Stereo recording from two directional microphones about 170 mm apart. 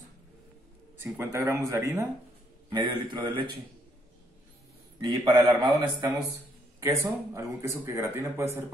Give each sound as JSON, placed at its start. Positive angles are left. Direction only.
{"t": 1.0, "sound": "a man's voice", "side_deg": -15}
{"t": 5.0, "sound": "a man's voice", "side_deg": -25}